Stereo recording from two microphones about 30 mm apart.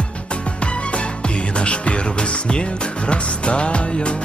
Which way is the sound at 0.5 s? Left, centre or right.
Left.